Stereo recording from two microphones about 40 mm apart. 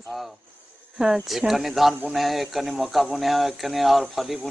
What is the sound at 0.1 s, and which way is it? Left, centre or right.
Speech, centre.